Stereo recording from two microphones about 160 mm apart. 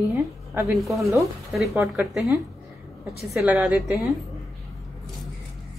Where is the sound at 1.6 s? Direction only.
5° right (ahead or behind).